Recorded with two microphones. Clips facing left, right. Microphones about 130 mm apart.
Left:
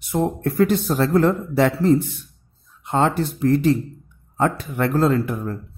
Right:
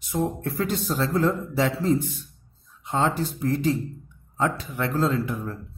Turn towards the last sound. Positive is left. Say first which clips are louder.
# left 5 dB
turn(degrees=55)  # may be behind; listen again after turning